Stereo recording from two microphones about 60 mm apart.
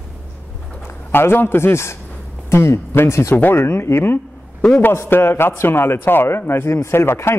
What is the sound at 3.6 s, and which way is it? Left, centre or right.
A man's voice, left.